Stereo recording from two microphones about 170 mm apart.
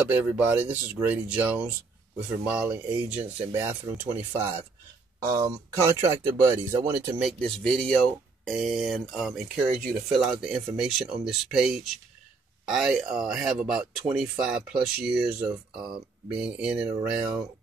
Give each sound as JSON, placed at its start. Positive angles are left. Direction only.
{"t": 0.0, "sound": "speech", "side_deg": -10}
{"t": 7.2, "sound": "speech", "side_deg": 0}